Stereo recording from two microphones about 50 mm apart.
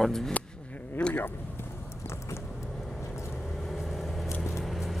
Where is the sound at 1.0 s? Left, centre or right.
Left.